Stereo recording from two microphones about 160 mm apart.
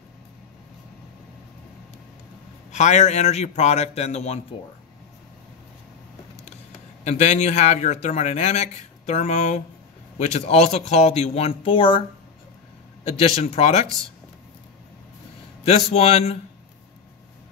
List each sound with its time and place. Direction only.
2.7 s speech: 45° left (ahead or behind)
7.1 s speech: 45° left (ahead or behind)
13.0 s speech: 40° left (ahead or behind)
15.6 s a man's voice: 40° left (ahead or behind)